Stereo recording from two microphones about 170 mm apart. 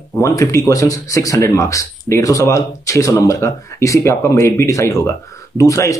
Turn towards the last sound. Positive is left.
turn(degrees=20)  # may be behind; listen again after turning